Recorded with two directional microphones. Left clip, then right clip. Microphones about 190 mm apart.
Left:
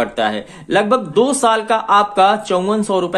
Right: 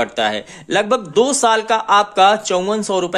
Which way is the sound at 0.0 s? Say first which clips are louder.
Even; 25° right (ahead or behind).